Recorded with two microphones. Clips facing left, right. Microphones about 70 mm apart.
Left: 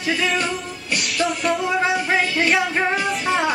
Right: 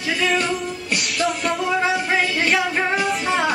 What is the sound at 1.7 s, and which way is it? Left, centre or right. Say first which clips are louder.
Music: right 2 dB; centre.